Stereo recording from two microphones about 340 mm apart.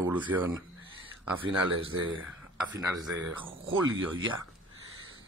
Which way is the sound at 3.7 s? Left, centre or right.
Right.